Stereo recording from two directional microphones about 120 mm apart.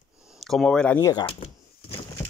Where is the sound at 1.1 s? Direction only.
50° left (ahead or behind).